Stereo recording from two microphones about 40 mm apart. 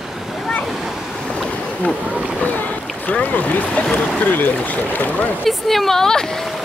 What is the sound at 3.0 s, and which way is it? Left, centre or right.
Speech, left.